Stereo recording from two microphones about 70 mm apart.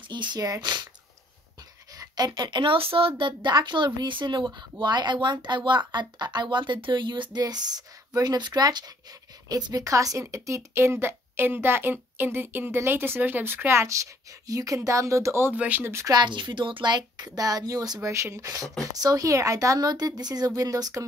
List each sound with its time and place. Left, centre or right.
0.1 s speech: right
2.0 s a sound: right
3.4 s a woman's voice: right
9.8 s speech: right
14.5 s a woman's voice: right
15.5 s speech: right
16.8 s a woman's voice: right
18.0 s speech: right
19.9 s a woman's voice: right
20.5 s speech: right